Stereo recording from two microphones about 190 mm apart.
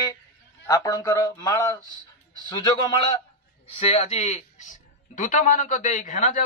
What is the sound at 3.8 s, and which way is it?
A man's voice, 35° left (ahead or behind).